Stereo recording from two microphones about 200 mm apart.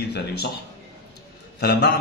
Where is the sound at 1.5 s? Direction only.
55° left (ahead or behind).